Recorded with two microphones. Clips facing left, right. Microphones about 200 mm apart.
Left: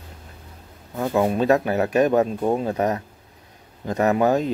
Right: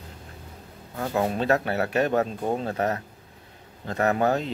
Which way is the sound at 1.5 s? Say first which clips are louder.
Left 5 dB; 20° left (ahead or behind).